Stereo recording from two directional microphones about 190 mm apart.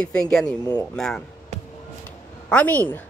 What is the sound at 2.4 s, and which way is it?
Speech, 10° left (ahead or behind).